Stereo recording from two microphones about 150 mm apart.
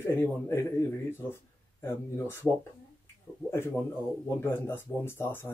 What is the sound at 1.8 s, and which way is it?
Speech, 15° left (ahead or behind).